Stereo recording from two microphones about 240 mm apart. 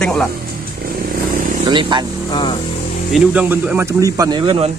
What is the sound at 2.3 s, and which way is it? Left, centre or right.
Speech, centre.